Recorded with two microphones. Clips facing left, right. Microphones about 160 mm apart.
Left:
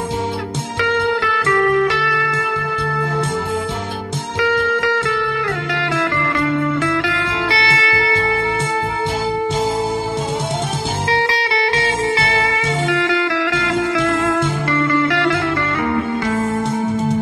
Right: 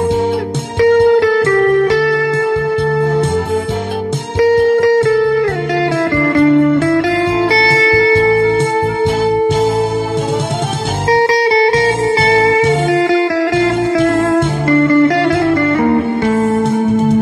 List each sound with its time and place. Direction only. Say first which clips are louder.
0.8 s music: right 11 dB; 40° right (ahead or behind)
4.4 s music: right 9 dB; 40° right (ahead or behind)
11.1 s music: right 10 dB; 40° right (ahead or behind)
16.4 s music: right 6 dB; 60° right (ahead or behind)